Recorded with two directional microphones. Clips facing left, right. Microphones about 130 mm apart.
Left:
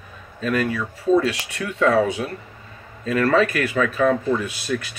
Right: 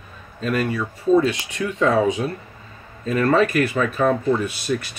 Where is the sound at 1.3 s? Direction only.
70° left (ahead or behind).